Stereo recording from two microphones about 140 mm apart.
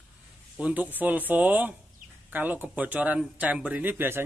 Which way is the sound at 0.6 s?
10° right (ahead or behind).